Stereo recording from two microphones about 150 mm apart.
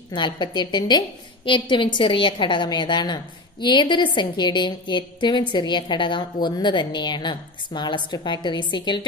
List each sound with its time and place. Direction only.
0.1 s a woman's voice: 30° left (ahead or behind)